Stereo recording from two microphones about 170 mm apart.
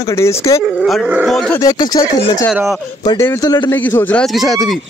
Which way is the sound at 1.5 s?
25° left (ahead or behind).